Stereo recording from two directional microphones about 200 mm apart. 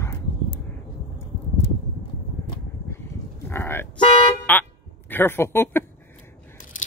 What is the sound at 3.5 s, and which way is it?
Toot, 10° left (ahead or behind).